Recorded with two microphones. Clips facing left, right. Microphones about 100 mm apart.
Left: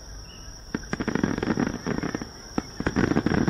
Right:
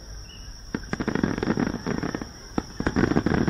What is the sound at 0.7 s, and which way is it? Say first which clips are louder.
Fireworks: even; centre (ahead or behind).